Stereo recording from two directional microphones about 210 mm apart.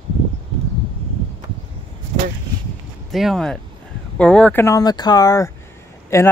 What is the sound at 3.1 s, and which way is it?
Speech, centre (ahead or behind).